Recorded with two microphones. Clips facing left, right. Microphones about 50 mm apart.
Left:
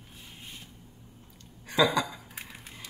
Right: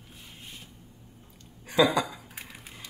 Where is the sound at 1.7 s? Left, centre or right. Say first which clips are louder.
Right 2 dB; centre.